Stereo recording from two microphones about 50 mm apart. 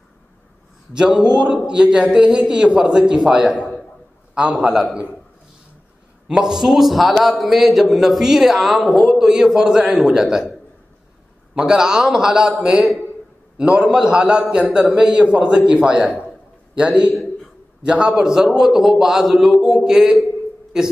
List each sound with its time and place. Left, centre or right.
0.9 s a man's voice: centre
4.6 s a man's voice: centre
6.2 s a man's voice: centre
11.5 s a man's voice: centre
18.1 s a man's voice: centre